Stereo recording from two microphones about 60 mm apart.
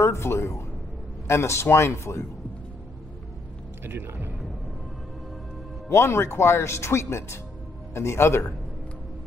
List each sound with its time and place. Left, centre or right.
0.0 s a sound: left
1.2 s speech: left
3.8 s a man's voice: right
5.9 s speech: left